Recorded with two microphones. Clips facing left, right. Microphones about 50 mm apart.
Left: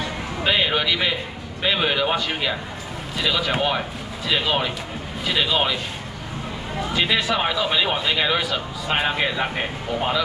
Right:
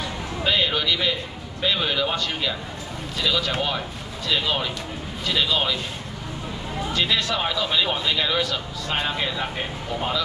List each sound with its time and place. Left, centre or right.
0.4 s speech: centre
6.9 s speech: centre